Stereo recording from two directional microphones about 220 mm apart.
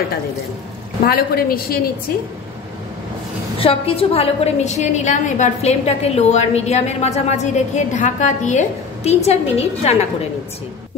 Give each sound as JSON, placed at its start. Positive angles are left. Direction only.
{"t": 1.0, "sound": "a woman's voice", "side_deg": 45}
{"t": 3.5, "sound": "a woman's voice", "side_deg": 25}